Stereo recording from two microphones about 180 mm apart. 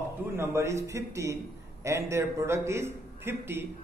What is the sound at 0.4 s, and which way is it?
A man's voice, 15° right (ahead or behind).